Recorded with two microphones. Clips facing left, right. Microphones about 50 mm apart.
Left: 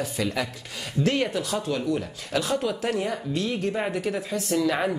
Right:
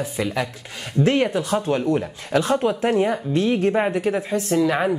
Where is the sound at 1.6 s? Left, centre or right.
Right; by 4.9 s centre.